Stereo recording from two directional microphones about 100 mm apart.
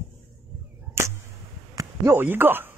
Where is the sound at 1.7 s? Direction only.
25° right (ahead or behind).